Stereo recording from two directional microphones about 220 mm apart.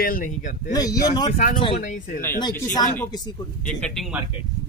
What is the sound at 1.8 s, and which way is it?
Speech, 40° left (ahead or behind).